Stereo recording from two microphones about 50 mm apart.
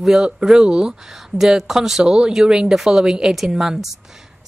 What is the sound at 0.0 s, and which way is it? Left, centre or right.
Speech, centre.